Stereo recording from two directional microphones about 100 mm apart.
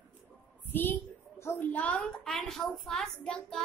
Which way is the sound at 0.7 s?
20° left (ahead or behind).